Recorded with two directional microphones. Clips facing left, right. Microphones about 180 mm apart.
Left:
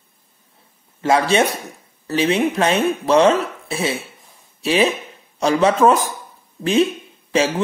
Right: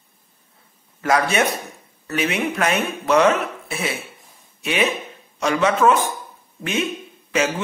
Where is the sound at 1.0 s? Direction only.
25° left (ahead or behind).